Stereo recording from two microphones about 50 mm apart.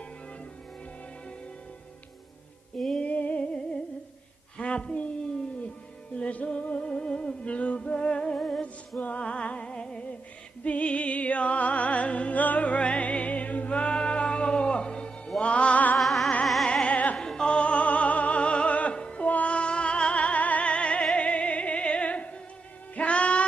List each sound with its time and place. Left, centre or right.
3.0 s a sound: left
4.6 s a sound: left
6.1 s music: left
9.0 s music: left
16.0 s music: centre
16.6 s music: left
17.2 s opera: centre
19.2 s music: left